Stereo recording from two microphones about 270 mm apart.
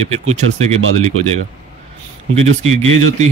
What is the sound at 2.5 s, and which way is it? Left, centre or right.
Speech, right.